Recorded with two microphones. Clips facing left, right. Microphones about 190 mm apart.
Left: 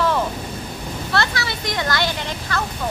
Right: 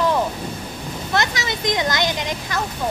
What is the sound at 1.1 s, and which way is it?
Speech, 20° right (ahead or behind).